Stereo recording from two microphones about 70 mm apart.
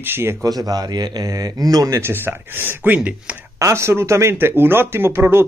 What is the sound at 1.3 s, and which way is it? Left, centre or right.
Speech, right.